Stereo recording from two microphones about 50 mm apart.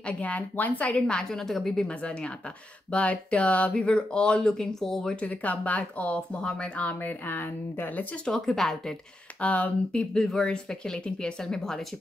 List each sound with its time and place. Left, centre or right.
0.0 s speech: left; by 1.9 s centre
1.9 s speech: left; by 5.1 s centre
5.1 s speech: left
7.9 s speech: left
8.3 s speech: centre
9.4 s speech: left
10.1 s speech: centre